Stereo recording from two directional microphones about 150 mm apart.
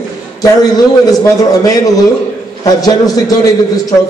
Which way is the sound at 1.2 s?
20° left (ahead or behind).